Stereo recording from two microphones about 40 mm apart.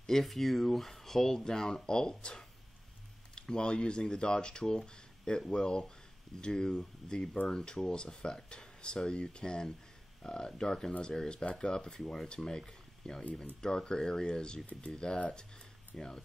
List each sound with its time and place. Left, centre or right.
0.0 s speech: centre
12.0 s speech: centre
15.9 s speech: centre